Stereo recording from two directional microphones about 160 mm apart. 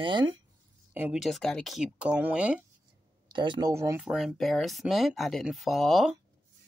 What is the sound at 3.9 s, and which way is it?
Speech, centre (ahead or behind).